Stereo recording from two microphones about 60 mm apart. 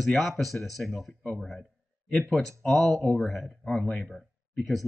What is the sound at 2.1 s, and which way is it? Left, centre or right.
Speech, centre.